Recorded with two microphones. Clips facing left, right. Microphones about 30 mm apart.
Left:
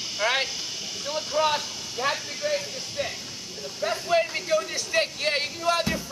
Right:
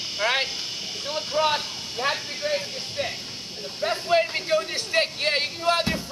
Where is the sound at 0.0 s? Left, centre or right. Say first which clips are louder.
Right 1 dB; right.